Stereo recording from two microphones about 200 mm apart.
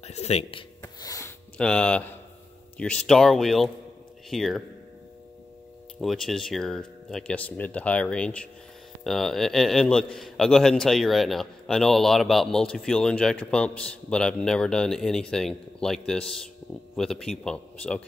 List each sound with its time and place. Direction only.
0.0 s a sound: 30° left (ahead or behind); by 1.3 s 15° left (ahead or behind)
1.6 s a man's voice: 5° left (ahead or behind)
5.9 s a man's voice: centre (ahead or behind)